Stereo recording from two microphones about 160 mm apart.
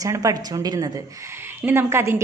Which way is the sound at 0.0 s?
20° right (ahead or behind).